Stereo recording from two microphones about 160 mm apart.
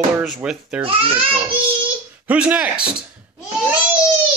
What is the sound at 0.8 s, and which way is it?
Speech, 35° right (ahead or behind).